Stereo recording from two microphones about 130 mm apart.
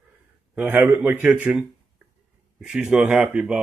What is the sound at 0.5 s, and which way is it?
A man's voice, 15° right (ahead or behind).